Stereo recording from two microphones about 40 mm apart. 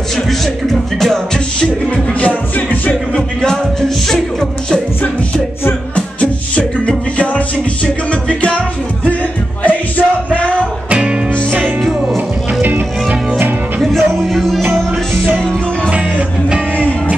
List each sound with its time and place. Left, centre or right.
0.3 s music: centre
2.1 s music: left
3.2 s music: centre
7.2 s music: left
12.6 s music: right
13.8 s music: centre